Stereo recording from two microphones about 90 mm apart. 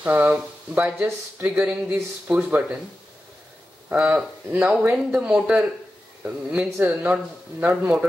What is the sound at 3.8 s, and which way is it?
Speech, 15° right (ahead or behind).